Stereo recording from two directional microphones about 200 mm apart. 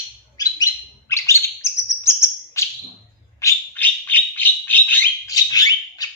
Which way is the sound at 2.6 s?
15° left (ahead or behind).